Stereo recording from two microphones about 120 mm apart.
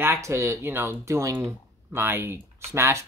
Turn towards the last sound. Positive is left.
turn(degrees=-25)  # may be behind; listen again after turning